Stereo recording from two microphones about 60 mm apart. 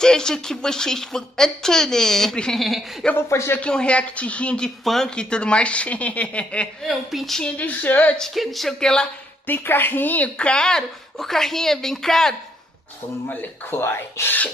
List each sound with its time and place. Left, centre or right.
0.0 s a woman's voice: centre
3.2 s speech: left
3.6 s speech: centre
4.6 s speech: centre
6.9 s a woman's voice: centre
7.5 s speech: left
8.2 s speech: centre
9.5 s a woman's voice: left
10.3 s speech: centre
13.3 s a woman's voice: left
13.7 s speech: left